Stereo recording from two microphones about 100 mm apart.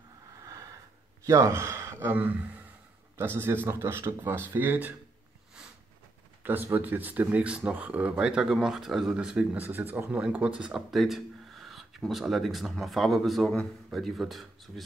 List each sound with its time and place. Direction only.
0.4 s a sound: 35° right (ahead or behind)
1.2 s speech: 30° right (ahead or behind)
6.4 s speech: 20° right (ahead or behind); by 14.7 s centre (ahead or behind)